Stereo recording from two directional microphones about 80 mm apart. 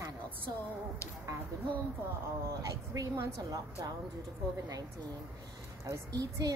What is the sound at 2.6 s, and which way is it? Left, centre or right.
A woman's voice, right.